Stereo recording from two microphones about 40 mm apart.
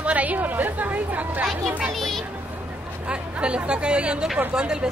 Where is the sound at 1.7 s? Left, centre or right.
Right.